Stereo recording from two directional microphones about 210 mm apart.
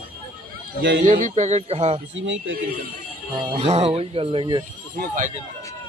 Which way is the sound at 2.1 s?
60° right (ahead or behind).